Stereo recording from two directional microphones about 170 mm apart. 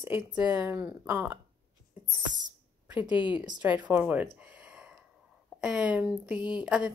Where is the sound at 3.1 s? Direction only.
30° left (ahead or behind).